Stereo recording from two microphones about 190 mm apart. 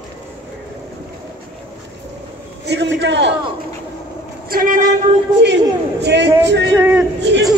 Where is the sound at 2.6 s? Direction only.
65° right (ahead or behind).